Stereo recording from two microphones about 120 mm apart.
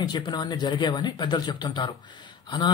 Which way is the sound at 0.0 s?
35° left (ahead or behind).